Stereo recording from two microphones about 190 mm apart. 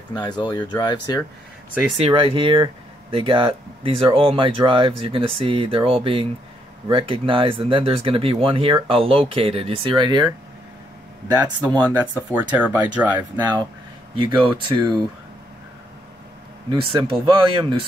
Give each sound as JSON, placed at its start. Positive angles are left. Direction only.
{"t": 0.1, "sound": "speech", "side_deg": 20}
{"t": 2.0, "sound": "speech", "side_deg": -30}
{"t": 11.2, "sound": "speech", "side_deg": -20}
{"t": 14.1, "sound": "speech", "side_deg": -25}
{"t": 16.9, "sound": "speech", "side_deg": -25}